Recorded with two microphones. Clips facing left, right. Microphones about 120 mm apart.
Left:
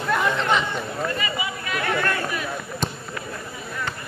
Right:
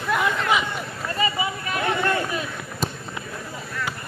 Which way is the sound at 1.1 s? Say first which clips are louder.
Right 3 dB; 30° right (ahead or behind).